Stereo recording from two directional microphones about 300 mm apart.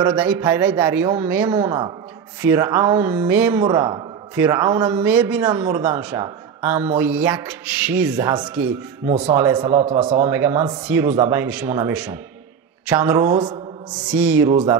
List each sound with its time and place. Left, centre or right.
0.0 s speech: centre